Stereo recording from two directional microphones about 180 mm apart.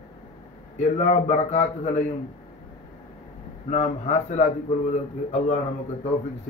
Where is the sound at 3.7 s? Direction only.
40° left (ahead or behind).